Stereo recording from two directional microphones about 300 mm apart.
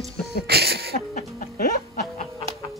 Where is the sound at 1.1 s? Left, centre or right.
Left.